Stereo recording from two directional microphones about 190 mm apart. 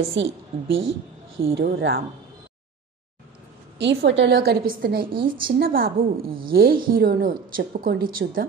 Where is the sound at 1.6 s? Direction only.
60° right (ahead or behind).